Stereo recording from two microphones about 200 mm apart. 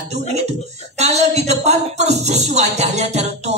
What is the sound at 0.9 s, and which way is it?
A woman's voice, 35° right (ahead or behind).